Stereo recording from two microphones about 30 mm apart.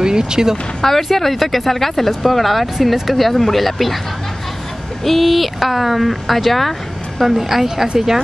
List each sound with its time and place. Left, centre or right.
0.0 s speech: right
0.8 s speech: centre
5.0 s speech: centre
7.2 s a woman's voice: centre